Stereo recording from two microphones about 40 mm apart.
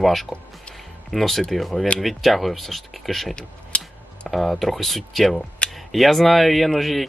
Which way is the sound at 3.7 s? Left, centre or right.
Left.